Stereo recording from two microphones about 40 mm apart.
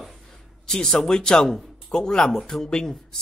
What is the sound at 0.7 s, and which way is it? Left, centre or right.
Speech, centre.